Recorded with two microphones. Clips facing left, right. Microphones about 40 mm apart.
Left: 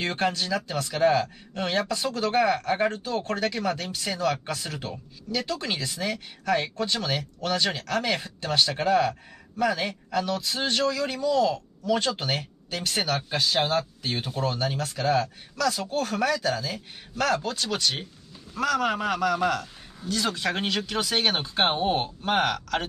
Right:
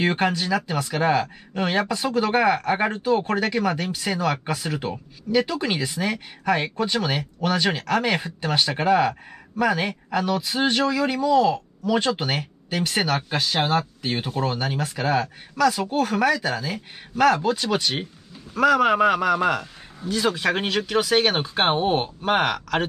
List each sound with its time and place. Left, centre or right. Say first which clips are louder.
0.0 s speech: right 4 dB; centre